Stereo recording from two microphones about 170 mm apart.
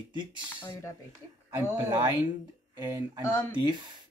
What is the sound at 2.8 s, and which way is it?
Speech, 25° right (ahead or behind).